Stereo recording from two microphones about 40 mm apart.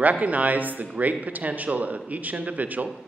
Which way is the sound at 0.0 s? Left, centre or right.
Right.